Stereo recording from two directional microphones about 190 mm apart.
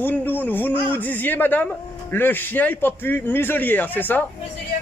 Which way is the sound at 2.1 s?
10° left (ahead or behind).